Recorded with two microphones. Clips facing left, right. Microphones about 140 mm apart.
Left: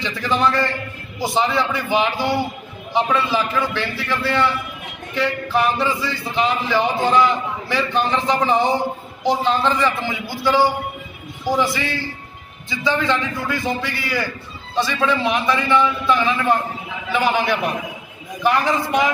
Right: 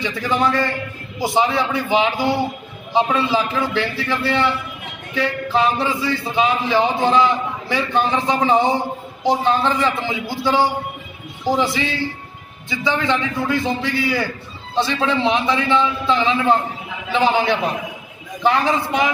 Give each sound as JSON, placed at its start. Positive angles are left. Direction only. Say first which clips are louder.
{"t": 0.0, "sound": "a man's voice", "louder": "even", "side_deg": -15}